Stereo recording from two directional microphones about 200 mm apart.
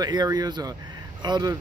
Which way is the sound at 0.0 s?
20° right (ahead or behind).